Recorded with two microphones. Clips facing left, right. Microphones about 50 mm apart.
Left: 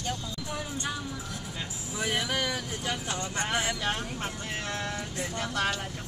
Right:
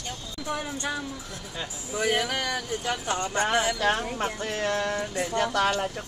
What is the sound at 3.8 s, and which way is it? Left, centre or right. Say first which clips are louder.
Speech: right 6 dB; right.